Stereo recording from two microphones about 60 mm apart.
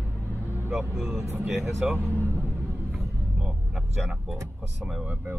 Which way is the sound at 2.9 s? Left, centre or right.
Centre.